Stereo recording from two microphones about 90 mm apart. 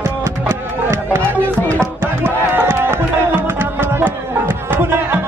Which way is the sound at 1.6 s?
15° left (ahead or behind).